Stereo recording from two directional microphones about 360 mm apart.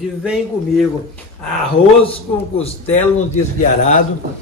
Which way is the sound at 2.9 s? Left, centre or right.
Centre.